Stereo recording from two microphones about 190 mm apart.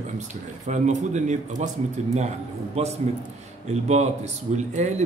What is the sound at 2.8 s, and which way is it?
Speech, 30° right (ahead or behind).